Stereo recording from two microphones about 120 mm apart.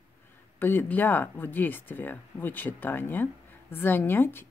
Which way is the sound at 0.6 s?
15° left (ahead or behind).